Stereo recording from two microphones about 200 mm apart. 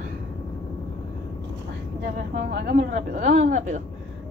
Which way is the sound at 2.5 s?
45° right (ahead or behind).